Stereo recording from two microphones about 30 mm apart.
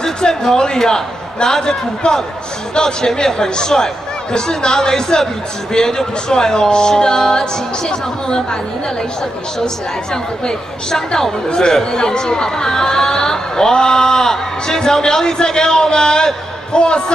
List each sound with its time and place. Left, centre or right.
0.2 s speech: left
10.4 s speech: left